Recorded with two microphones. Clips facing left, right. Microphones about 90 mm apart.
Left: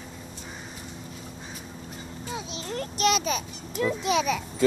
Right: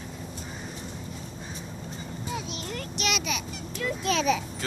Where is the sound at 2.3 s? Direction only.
25° left (ahead or behind).